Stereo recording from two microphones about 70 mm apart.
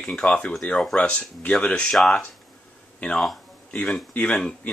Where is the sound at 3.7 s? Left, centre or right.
Centre.